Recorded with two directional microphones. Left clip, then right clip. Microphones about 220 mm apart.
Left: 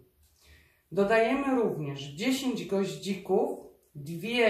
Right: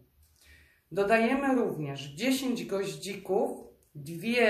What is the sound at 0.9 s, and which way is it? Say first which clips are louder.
Speech: left 1 dB; 50° right (ahead or behind).